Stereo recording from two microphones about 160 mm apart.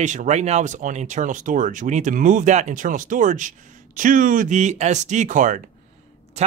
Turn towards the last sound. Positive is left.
turn(degrees=-50)  # may be behind; listen again after turning